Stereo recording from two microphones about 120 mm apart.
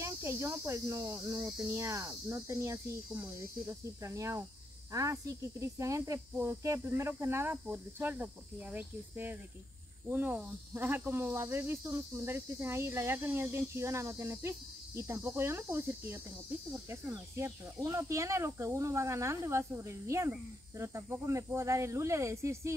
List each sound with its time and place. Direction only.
0.0 s speech: 20° right (ahead or behind)